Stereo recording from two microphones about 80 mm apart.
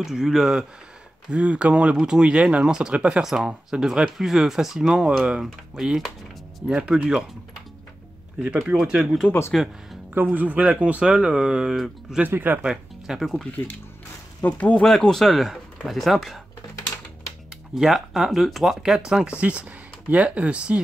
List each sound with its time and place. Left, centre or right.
0.0 s speech: centre
1.3 s speech: centre
8.7 s speech: centre
10.2 s speech: centre
12.2 s speech: right
12.6 s speech: centre
14.4 s speech: centre
14.9 s speech: centre
17.7 s speech: centre